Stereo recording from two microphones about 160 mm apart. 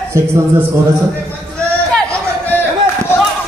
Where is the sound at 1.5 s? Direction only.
5° left (ahead or behind).